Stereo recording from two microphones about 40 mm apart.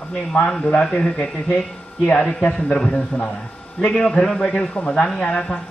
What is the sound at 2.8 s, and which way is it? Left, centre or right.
A man's voice, left.